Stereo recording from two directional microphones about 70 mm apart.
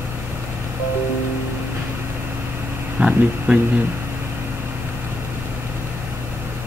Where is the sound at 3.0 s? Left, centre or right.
Centre.